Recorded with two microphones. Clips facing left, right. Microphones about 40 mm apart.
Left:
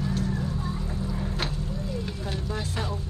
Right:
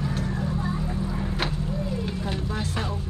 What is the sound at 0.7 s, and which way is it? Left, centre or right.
Vehicle, right.